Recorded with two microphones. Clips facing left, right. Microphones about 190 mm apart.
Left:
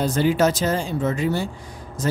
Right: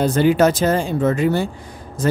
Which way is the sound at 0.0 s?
60° right (ahead or behind).